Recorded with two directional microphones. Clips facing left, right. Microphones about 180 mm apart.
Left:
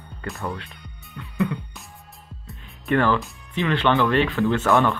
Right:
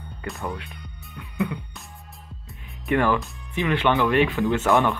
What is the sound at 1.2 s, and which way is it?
Music, 15° right (ahead or behind).